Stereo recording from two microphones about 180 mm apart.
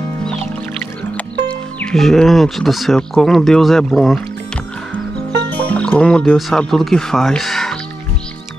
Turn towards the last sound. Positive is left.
turn(degrees=0)  # may be behind; listen again after turning